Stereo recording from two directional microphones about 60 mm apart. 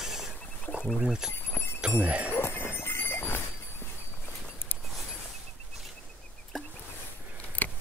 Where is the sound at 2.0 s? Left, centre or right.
Right.